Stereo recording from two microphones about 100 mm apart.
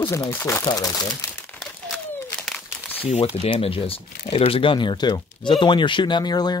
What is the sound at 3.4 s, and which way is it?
Speech, 70° left (ahead or behind).